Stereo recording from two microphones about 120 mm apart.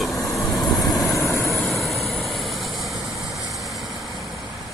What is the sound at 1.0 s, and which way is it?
Vehicle, 25° left (ahead or behind).